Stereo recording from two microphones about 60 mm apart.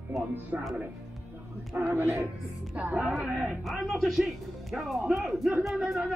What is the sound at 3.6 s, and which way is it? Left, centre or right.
Speech, centre.